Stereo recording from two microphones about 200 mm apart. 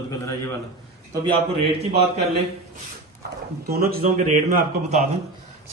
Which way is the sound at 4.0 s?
40° right (ahead or behind).